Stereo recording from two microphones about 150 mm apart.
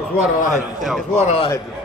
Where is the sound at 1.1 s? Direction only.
50° left (ahead or behind).